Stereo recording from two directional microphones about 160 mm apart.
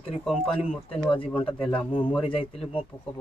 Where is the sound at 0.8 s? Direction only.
35° left (ahead or behind).